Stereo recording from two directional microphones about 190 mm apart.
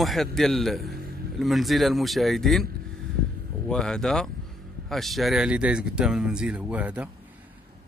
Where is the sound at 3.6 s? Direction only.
5° left (ahead or behind).